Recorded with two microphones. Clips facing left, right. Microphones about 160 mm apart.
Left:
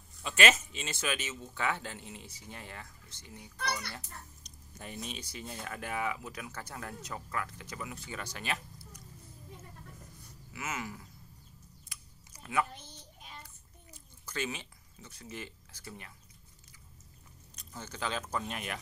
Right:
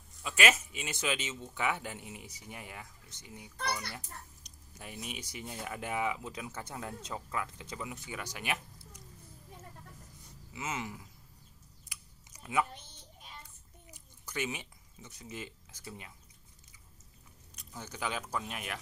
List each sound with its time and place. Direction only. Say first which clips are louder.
0.2 s speech: left 2 dB; 5° right (ahead or behind)
10.5 s a sound: right 1 dB; 20° right (ahead or behind)
17.6 s speech: even; 10° right (ahead or behind)